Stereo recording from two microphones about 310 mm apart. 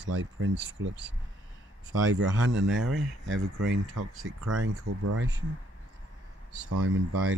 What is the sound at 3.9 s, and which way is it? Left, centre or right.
Speech, right.